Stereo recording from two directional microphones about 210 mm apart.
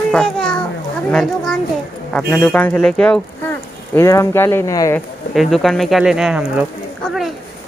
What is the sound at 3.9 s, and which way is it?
Speech, 15° left (ahead or behind).